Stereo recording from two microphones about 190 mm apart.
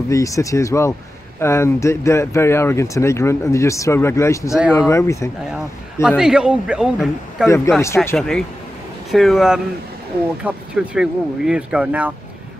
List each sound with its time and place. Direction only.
0.1 s speech: 15° left (ahead or behind)
6.0 s a man's voice: 5° right (ahead or behind)
7.4 s a man's voice: 15° left (ahead or behind); by 12.1 s 5° right (ahead or behind)